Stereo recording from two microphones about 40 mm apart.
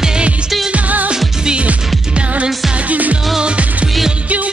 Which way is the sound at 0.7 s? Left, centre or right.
Right.